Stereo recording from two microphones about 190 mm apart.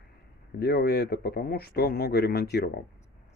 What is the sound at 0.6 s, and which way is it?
Speech, 55° left (ahead or behind).